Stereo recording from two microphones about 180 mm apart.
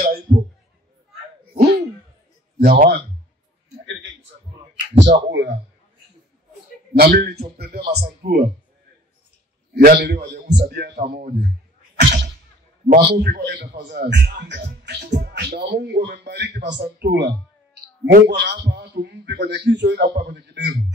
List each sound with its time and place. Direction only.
1.5 s a sound: 35° right (ahead or behind)
2.6 s speech: 50° right (ahead or behind)
3.8 s a sound: 90° right
4.9 s a man's voice: 70° right (ahead or behind)
6.9 s a man's voice: 60° right (ahead or behind)
9.8 s a man's voice: 55° right (ahead or behind)
12.0 s whip: 65° right (ahead or behind)
12.8 s a man's voice: 55° right (ahead or behind)